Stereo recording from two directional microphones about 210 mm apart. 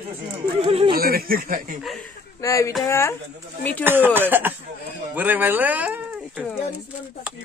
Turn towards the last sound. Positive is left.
turn(degrees=-5)  # may be behind; listen again after turning